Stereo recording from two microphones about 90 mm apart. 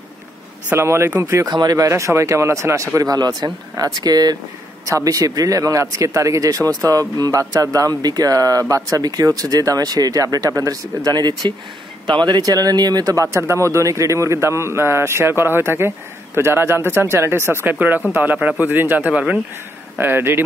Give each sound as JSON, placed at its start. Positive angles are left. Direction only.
{"t": 0.7, "sound": "speech", "side_deg": -30}
{"t": 1.2, "sound": "speech", "side_deg": -40}
{"t": 1.9, "sound": "speech", "side_deg": -35}
{"t": 11.1, "sound": "speech", "side_deg": -50}
{"t": 20.0, "sound": "speech", "side_deg": -25}